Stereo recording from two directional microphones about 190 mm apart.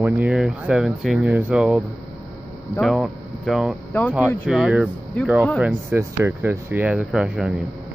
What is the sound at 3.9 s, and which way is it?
Speech, 10° left (ahead or behind).